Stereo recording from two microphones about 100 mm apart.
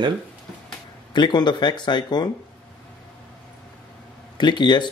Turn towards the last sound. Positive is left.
turn(degrees=50)  # may be behind; listen again after turning